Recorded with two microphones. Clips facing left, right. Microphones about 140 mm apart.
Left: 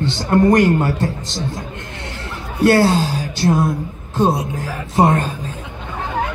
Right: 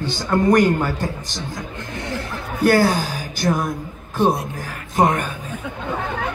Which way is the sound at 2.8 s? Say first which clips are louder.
Left 3 dB; 25° left (ahead or behind).